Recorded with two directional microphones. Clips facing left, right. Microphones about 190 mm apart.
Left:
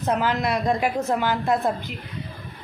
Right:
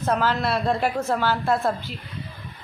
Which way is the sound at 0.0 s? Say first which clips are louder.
Even; 15° left (ahead or behind).